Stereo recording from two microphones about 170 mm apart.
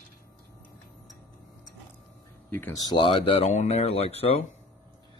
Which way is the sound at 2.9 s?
30° left (ahead or behind).